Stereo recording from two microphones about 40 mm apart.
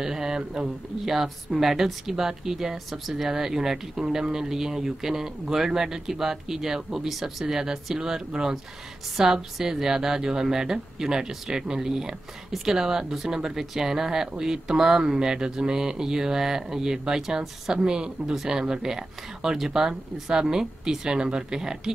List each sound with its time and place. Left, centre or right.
0.0 s speech: centre
1.0 s speech: centre